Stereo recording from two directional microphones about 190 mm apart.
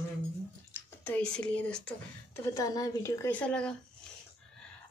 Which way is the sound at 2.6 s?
20° left (ahead or behind).